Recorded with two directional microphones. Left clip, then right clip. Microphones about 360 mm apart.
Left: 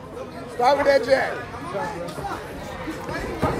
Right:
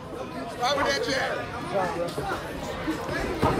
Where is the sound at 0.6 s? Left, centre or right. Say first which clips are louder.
Left 8 dB; centre.